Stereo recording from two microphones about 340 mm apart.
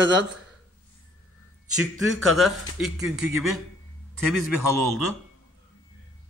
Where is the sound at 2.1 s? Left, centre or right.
Centre.